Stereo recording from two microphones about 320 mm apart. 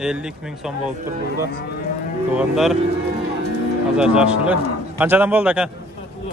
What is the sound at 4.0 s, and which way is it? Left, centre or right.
Speech, centre.